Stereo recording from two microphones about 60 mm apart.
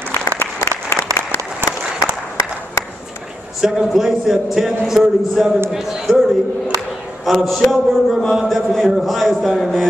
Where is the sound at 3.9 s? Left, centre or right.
Centre.